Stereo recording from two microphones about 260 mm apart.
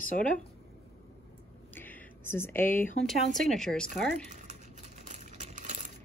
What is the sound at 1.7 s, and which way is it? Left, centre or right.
Speech, centre.